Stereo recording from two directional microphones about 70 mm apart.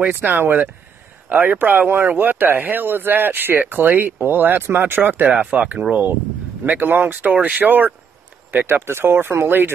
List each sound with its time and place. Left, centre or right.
0.0 s speech: right